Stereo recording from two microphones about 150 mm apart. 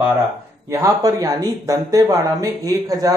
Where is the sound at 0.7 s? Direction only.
20° right (ahead or behind).